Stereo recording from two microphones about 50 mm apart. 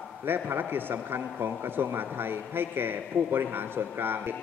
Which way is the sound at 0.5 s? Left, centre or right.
Right.